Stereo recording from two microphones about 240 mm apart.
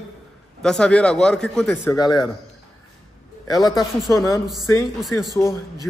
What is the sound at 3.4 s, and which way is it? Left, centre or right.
A man's voice, centre.